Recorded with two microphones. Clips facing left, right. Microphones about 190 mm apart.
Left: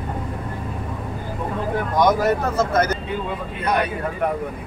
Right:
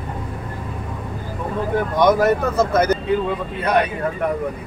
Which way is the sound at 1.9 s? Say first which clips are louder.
Right 2 dB; 60° right (ahead or behind).